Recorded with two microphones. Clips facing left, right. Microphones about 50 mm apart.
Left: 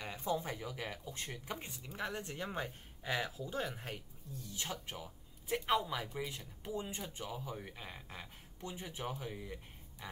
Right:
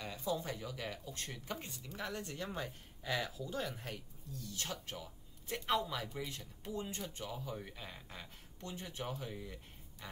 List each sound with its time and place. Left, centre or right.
0.0 s speech: left